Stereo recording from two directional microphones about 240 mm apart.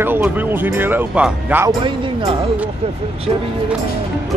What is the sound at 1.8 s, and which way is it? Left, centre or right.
Speech, right.